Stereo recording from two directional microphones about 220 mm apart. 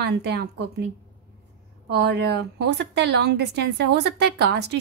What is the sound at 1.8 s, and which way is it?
A woman's voice, 50° right (ahead or behind).